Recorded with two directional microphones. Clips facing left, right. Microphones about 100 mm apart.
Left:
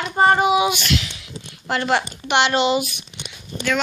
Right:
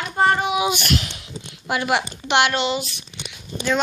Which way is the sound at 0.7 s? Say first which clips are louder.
Right 1 dB; 50° right (ahead or behind).